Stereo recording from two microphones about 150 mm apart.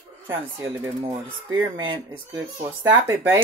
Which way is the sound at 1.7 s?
35° right (ahead or behind).